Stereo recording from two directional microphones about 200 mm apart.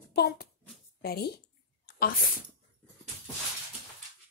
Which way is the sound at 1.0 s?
50° left (ahead or behind).